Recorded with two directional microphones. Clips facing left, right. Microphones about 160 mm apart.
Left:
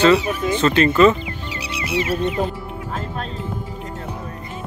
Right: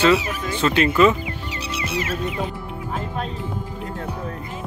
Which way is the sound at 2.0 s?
30° left (ahead or behind).